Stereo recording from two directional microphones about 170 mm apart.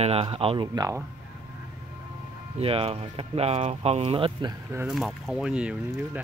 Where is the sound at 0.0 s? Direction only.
35° right (ahead or behind).